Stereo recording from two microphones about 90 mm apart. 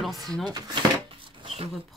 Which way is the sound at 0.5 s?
50° right (ahead or behind).